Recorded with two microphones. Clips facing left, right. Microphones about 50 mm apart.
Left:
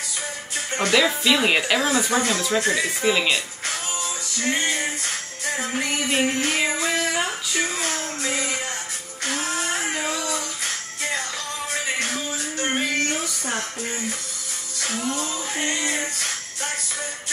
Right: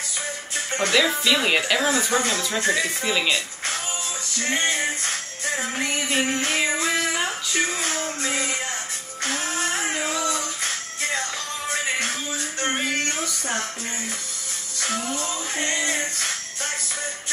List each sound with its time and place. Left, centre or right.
0.7 s speech: centre
4.4 s music: centre
9.2 s a sound: centre
10.3 s music: centre
12.7 s a sound: centre
15.5 s music: centre